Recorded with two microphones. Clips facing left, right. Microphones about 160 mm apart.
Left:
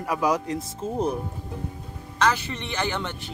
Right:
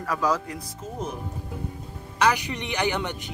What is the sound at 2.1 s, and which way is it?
A man's voice, 15° right (ahead or behind).